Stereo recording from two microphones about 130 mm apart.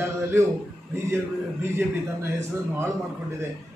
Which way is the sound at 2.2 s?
20° right (ahead or behind).